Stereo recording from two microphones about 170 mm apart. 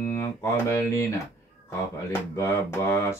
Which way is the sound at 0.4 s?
15° left (ahead or behind).